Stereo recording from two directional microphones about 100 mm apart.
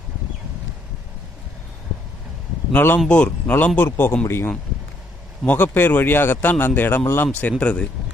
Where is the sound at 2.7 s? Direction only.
20° left (ahead or behind).